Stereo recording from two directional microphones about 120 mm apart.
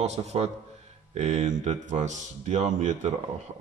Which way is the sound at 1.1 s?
75° right (ahead or behind).